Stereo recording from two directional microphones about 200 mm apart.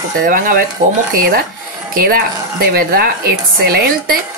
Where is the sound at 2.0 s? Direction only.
50° right (ahead or behind).